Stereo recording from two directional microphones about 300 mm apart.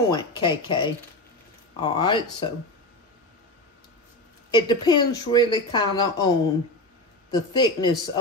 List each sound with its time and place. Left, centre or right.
0.1 s speech: centre
4.5 s speech: centre